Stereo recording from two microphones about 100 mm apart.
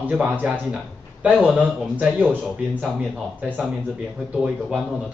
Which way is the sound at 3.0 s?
Centre (ahead or behind).